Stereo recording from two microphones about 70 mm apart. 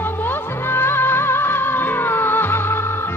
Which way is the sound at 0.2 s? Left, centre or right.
Left.